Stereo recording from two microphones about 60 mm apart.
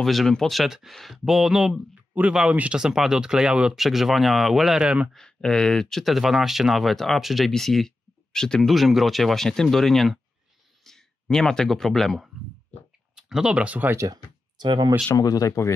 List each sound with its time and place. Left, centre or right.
0.0 s speech: centre
2.5 s speech: centre
3.7 s speech: centre
4.8 s speech: centre
5.1 s speech: centre
8.6 s speech: centre
13.1 s speech: centre
13.9 s speech: right
15.1 s speech: left